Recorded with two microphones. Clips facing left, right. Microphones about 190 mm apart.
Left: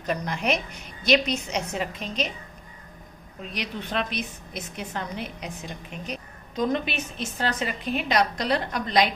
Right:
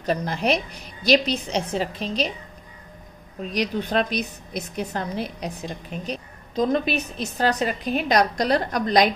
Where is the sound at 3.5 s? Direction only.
40° right (ahead or behind).